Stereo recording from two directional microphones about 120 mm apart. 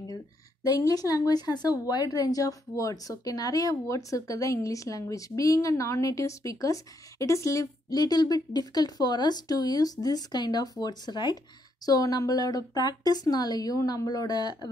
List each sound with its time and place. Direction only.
0.7 s a woman's voice: 30° left (ahead or behind)